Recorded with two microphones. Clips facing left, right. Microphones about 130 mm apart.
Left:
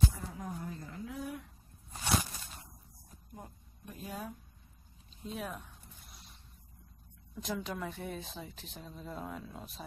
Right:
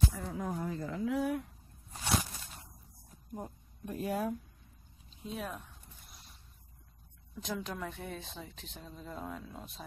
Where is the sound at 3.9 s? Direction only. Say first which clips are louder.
Right 9 dB; 65° right (ahead or behind).